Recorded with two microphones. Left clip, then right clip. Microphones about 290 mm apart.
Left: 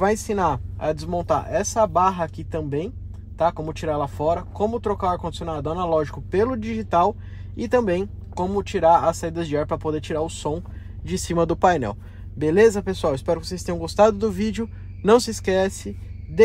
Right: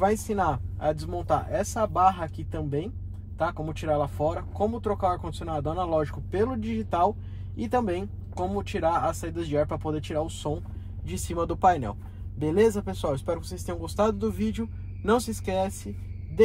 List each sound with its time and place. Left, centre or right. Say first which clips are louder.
0.0 s speech: left 4 dB; left